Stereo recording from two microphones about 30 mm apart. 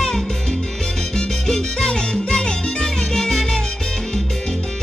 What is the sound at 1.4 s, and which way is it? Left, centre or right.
Music, left.